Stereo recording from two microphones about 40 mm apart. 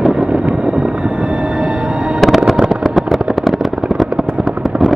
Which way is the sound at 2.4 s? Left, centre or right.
Centre.